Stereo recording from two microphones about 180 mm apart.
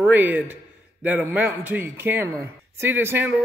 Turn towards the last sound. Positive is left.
turn(degrees=-10)  # may be behind; listen again after turning